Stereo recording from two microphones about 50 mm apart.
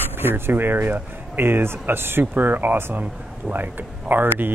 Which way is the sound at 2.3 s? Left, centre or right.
Right.